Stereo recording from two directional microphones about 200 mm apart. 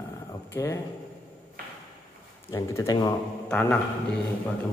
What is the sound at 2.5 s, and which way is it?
Speech, 15° left (ahead or behind).